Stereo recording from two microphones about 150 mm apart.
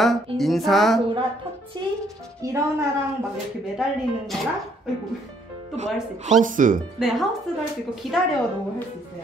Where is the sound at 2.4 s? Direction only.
20° right (ahead or behind).